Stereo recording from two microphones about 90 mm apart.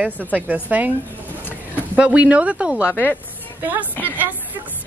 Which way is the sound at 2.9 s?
20° left (ahead or behind).